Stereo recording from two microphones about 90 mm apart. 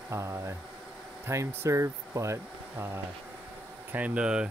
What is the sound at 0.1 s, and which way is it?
Speech, 30° right (ahead or behind).